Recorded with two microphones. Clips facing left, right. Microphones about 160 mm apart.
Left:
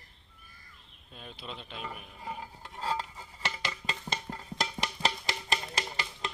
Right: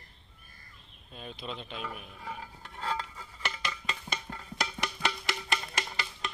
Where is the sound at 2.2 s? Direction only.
20° left (ahead or behind).